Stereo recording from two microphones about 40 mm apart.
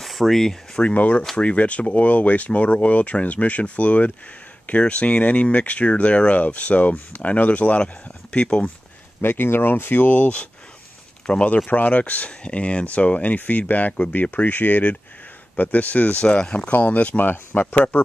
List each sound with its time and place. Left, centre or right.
0.0 s a sound: centre
0.4 s speech: centre
0.8 s speech: left
7.8 s speech: left
9.2 s speech: left
10.0 s speech: left
11.5 s speech: left
16.2 s speech: left
16.5 s speech: left
17.2 s speech: left